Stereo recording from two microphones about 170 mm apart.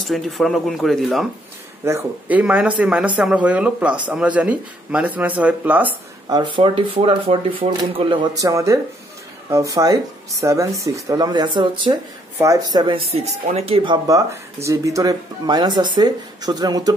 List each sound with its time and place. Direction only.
0.0 s speech: centre (ahead or behind)
1.9 s a man's voice: 10° right (ahead or behind)
6.2 s speech: 25° right (ahead or behind)